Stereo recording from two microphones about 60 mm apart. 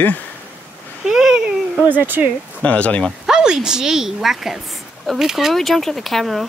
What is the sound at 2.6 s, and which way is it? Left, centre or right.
Speech, left.